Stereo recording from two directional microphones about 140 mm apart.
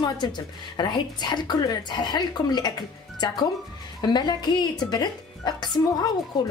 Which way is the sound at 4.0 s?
30° left (ahead or behind).